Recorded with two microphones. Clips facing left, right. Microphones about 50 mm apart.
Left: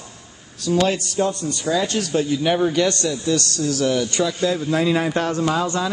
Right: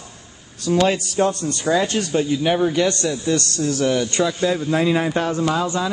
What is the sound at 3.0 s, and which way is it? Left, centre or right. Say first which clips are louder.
A man's voice: right 1 dB; right.